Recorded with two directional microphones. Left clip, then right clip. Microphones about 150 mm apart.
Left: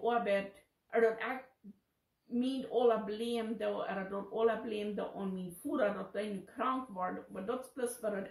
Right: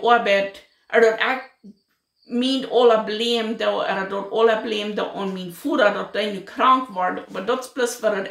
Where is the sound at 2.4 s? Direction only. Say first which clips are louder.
Right 15 dB; 15° right (ahead or behind).